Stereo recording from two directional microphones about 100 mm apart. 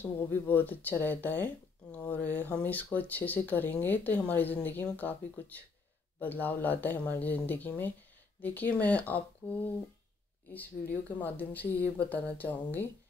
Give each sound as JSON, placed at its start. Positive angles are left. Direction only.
{"t": 0.0, "sound": "speech", "side_deg": 20}